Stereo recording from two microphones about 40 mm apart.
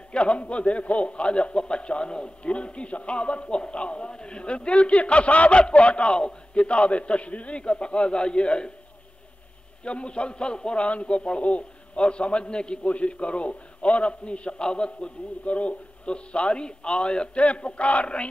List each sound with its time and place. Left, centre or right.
0.1 s a man's voice: left
9.8 s a man's voice: left